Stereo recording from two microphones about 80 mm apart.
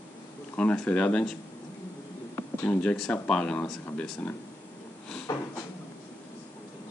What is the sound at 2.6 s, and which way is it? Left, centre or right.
Speech, centre.